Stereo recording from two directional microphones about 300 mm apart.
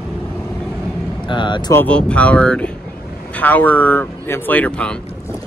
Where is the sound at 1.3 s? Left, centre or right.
Centre.